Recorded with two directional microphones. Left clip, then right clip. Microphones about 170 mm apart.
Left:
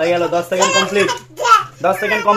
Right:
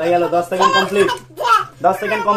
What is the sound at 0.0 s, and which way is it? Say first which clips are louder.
A child's voice: even; 35° left (ahead or behind).